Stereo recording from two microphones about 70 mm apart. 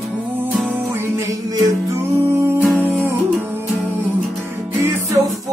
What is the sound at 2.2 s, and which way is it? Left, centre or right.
Music, right.